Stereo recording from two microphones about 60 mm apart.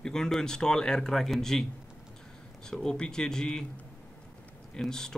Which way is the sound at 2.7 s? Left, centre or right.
Centre.